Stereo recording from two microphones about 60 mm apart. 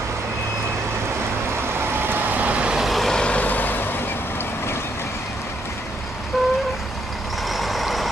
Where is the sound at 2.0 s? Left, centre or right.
Right.